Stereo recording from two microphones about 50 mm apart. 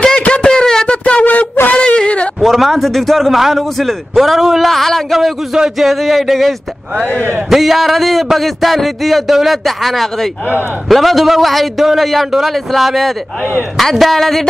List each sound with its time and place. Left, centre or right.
0.2 s a sound: centre
1.7 s whimper: left
2.4 s a man's voice: centre